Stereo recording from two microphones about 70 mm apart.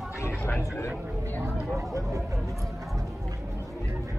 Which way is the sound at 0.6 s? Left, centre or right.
Left.